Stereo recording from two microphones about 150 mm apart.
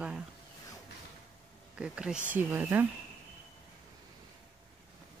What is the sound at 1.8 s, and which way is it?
Speech, 5° right (ahead or behind).